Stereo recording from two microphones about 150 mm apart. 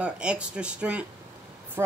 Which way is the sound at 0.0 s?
5° right (ahead or behind).